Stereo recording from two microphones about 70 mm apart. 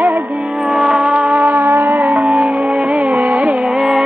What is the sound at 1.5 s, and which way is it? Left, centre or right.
Music, right.